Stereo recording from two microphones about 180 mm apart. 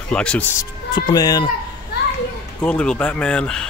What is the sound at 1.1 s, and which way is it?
Speech, 20° left (ahead or behind).